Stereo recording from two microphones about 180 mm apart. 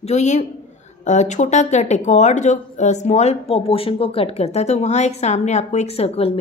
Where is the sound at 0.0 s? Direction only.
40° left (ahead or behind).